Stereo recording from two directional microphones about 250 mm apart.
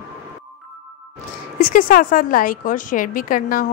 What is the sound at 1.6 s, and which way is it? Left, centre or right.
A woman's voice, left.